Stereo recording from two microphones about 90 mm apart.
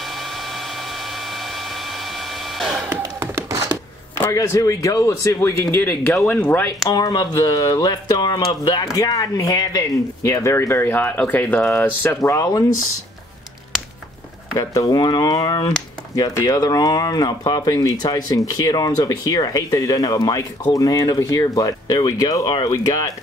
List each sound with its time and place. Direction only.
2.6 s a sound: centre (ahead or behind)
4.3 s speech: 40° left (ahead or behind); by 6.7 s 25° left (ahead or behind)
6.9 s speech: 50° left (ahead or behind)
8.9 s speech: 40° left (ahead or behind)
10.2 s speech: 35° left (ahead or behind)
12.2 s speech: 40° left (ahead or behind)
14.6 s speech: 40° left (ahead or behind)